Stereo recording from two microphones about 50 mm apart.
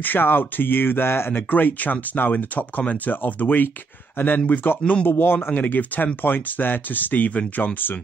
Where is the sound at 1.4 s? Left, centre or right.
Left.